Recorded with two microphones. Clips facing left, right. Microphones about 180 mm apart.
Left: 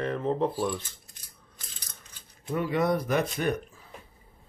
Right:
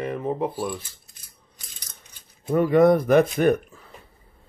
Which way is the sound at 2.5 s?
45° right (ahead or behind).